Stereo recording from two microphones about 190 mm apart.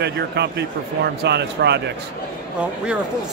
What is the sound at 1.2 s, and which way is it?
Speech, 60° right (ahead or behind).